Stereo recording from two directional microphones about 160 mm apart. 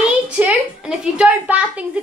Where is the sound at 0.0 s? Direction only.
5° right (ahead or behind).